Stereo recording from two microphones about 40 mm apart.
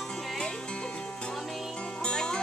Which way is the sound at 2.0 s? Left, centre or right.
Left.